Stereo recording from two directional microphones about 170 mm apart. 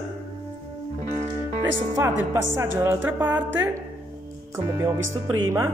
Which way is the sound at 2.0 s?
15° right (ahead or behind).